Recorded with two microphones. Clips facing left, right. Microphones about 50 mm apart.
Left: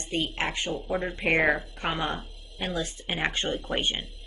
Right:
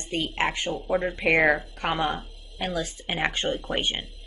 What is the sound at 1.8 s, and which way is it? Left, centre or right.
Speech, right.